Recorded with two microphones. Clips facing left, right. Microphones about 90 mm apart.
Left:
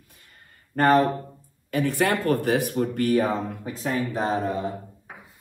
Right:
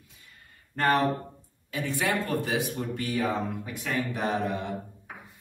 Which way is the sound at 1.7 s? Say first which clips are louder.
Left 6 dB; 60° left (ahead or behind).